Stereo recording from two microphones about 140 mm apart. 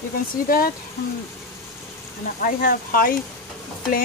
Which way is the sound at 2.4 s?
90° left.